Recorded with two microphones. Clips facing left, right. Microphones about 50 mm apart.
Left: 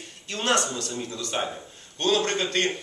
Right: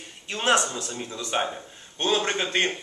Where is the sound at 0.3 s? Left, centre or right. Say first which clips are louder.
Right 2 dB; centre.